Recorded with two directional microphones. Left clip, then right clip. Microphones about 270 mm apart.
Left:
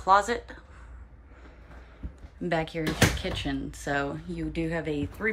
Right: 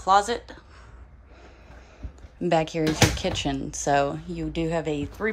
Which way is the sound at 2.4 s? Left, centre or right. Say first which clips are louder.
Right 6 dB; centre.